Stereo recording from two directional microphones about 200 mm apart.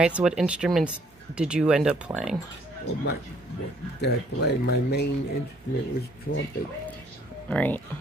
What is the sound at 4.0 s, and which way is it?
Speech, 55° left (ahead or behind).